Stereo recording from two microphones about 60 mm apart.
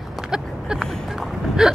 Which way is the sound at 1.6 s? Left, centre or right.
Centre.